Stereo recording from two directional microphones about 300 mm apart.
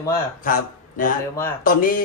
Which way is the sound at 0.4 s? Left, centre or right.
Left.